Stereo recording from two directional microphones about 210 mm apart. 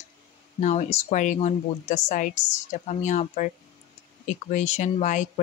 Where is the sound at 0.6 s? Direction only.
35° left (ahead or behind).